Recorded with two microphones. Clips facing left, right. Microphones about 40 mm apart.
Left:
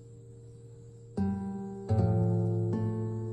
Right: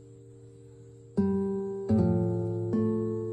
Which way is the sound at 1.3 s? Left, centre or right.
Right.